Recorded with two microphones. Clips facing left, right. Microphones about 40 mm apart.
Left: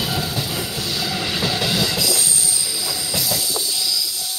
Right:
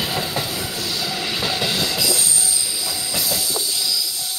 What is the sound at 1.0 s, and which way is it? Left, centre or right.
Train, centre.